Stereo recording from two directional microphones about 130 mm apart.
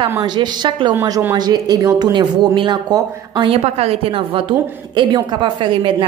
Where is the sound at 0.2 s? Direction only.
35° right (ahead or behind).